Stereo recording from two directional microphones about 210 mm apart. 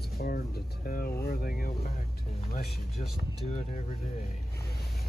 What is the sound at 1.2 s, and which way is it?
Vehicle, 45° left (ahead or behind).